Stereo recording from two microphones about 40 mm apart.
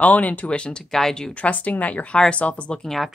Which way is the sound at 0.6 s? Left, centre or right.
Left.